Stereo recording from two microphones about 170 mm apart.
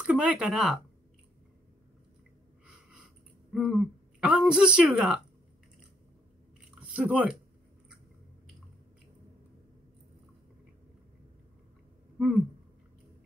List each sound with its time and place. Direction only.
0.0 s speech: 5° right (ahead or behind)
2.6 s a sound: 5° right (ahead or behind)
3.5 s a woman's voice: centre (ahead or behind)
6.8 s speech: 5° right (ahead or behind)
12.2 s a woman's voice: centre (ahead or behind)